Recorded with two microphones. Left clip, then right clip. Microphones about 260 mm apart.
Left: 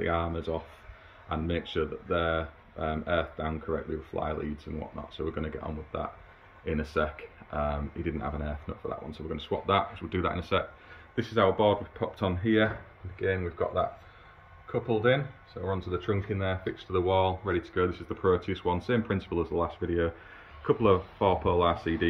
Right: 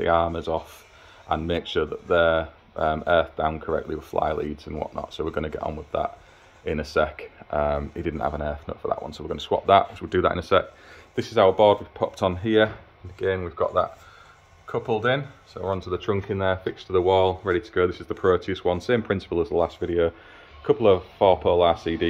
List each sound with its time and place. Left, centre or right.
0.0 s speech: centre